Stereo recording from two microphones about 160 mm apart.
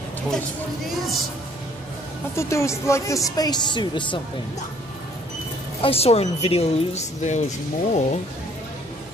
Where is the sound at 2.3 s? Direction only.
20° left (ahead or behind).